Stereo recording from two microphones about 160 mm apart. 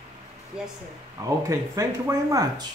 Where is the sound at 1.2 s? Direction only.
20° right (ahead or behind).